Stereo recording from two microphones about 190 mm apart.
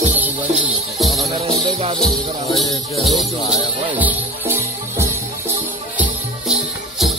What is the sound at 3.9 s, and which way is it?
Music, 10° right (ahead or behind).